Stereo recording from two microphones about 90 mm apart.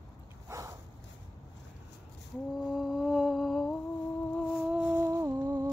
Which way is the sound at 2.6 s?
Centre (ahead or behind).